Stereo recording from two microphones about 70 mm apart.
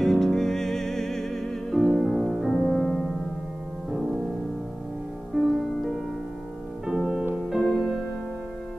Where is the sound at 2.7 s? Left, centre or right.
Centre.